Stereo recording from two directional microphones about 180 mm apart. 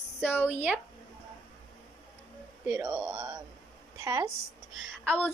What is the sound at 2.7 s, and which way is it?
Speech, 20° right (ahead or behind).